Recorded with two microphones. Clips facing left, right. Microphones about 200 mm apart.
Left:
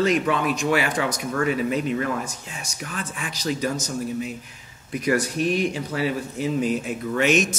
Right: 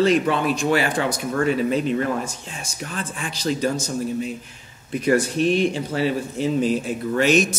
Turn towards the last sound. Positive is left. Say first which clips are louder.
# right 2 dB
turn(degrees=-35)  # may be behind; listen again after turning